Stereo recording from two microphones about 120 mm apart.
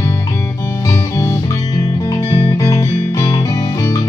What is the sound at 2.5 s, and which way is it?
Music, 30° left (ahead or behind).